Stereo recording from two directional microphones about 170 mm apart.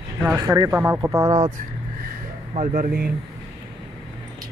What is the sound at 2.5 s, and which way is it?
Speech, 45° right (ahead or behind).